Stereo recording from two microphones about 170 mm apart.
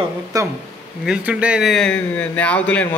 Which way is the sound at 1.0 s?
5° right (ahead or behind).